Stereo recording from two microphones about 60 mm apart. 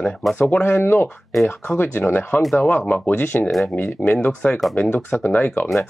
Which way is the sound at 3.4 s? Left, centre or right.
Centre.